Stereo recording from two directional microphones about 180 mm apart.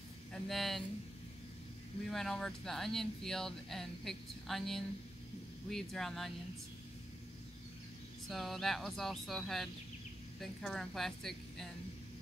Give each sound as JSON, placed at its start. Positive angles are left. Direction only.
{"t": 0.3, "sound": "speech", "side_deg": 0}
{"t": 2.0, "sound": "speech", "side_deg": 0}
{"t": 8.3, "sound": "speech", "side_deg": 0}